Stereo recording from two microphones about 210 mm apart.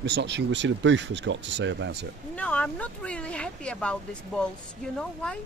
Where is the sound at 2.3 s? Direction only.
5° left (ahead or behind).